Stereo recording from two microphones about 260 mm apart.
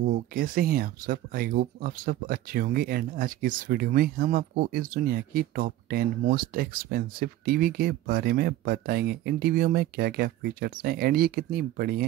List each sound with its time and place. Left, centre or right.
0.0 s speech: right